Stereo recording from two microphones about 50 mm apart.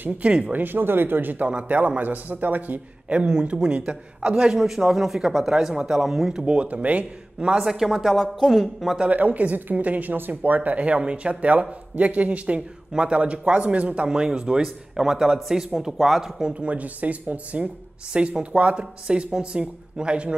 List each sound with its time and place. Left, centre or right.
0.2 s speech: right
0.6 s speech: right
1.4 s speech: right
4.6 s speech: centre
6.4 s speech: right
7.6 s a woman's voice: centre
9.1 s speech: right